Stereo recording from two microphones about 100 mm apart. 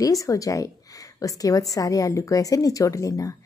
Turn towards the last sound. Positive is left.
turn(degrees=35)  # may be behind; listen again after turning